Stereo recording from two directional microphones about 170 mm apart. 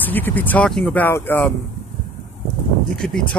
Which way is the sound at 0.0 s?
10° left (ahead or behind).